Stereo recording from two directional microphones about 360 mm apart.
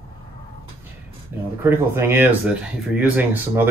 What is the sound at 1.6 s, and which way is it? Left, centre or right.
Speech, centre.